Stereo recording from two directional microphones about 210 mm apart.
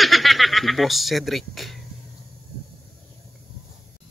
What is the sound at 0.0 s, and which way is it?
Speech, centre (ahead or behind).